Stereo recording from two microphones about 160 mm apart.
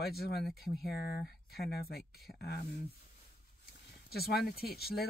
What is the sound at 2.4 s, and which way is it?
Speech, 80° left.